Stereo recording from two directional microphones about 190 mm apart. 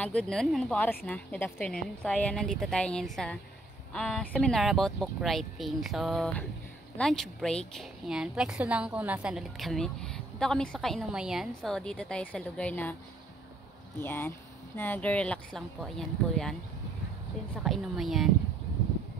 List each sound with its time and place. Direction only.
0.0 s a woman's voice: 5° left (ahead or behind)
13.9 s a woman's voice: 10° left (ahead or behind)
17.6 s a woman's voice: centre (ahead or behind)